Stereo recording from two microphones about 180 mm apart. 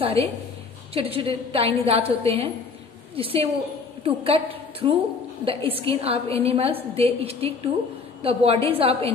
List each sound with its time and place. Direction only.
0.0 s a woman's voice: 35° right (ahead or behind)